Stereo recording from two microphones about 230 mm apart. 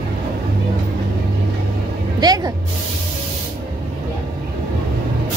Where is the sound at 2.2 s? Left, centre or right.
Centre.